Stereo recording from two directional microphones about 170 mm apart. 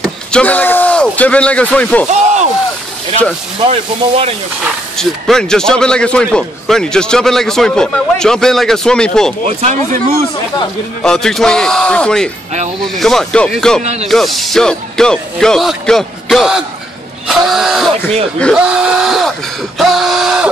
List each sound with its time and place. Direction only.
0.0 s speech: 5° left (ahead or behind)
3.5 s speech: 35° right (ahead or behind)
4.9 s a man's voice: 5° left (ahead or behind)
9.6 s speech: 45° right (ahead or behind)
11.0 s a man's voice: 5° left (ahead or behind)